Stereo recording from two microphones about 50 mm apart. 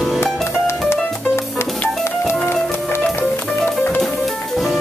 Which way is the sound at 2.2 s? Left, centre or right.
Left.